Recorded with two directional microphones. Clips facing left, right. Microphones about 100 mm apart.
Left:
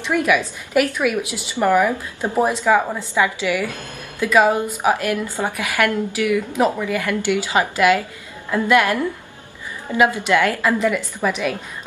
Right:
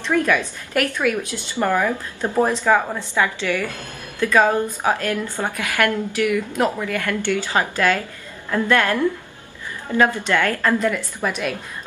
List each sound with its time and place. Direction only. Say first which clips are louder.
0.0 s a woman's voice: left 1 dB; 15° left (ahead or behind)